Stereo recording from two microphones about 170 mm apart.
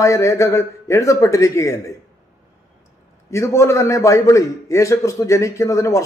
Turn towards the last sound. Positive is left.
turn(degrees=15)  # may be behind; listen again after turning